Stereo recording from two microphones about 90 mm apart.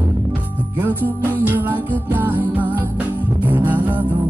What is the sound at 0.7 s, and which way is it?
Music, 20° right (ahead or behind).